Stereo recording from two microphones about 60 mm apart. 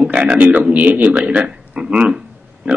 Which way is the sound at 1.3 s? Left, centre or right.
Centre.